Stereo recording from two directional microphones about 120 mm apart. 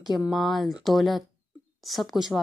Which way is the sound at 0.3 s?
Centre (ahead or behind).